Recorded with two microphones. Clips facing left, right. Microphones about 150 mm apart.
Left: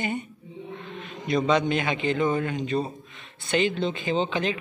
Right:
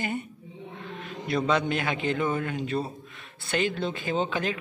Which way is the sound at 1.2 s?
5° right (ahead or behind).